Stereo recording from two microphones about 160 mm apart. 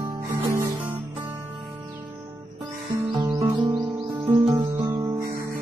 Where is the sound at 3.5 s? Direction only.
25° right (ahead or behind).